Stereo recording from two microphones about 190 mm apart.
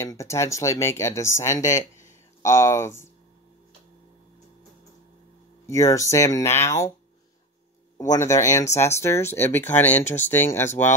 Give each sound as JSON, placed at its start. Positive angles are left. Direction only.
{"t": 0.0, "sound": "speech", "side_deg": 15}
{"t": 5.7, "sound": "speech", "side_deg": 15}
{"t": 8.1, "sound": "speech", "side_deg": 15}